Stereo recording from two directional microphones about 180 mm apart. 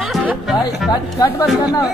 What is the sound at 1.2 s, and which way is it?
Speech, 20° left (ahead or behind).